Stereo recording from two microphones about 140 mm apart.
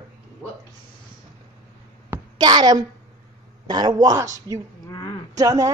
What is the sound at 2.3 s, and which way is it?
Speech, 30° right (ahead or behind).